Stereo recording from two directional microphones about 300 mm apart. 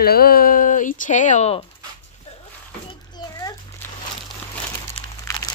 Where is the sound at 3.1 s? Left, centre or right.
Centre.